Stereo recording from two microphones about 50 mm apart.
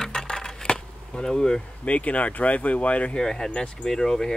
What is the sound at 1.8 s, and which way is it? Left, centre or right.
Speech, left.